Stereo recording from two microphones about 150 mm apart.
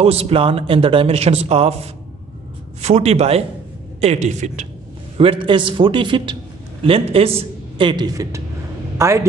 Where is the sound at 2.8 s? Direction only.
45° right (ahead or behind).